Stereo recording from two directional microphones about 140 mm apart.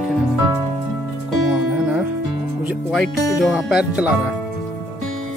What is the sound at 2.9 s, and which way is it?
Speech, centre (ahead or behind).